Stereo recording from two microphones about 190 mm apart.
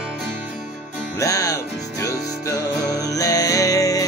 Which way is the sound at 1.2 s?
15° left (ahead or behind).